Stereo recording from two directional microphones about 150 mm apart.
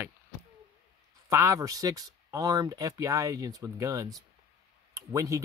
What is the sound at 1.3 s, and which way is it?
Speech, 20° right (ahead or behind).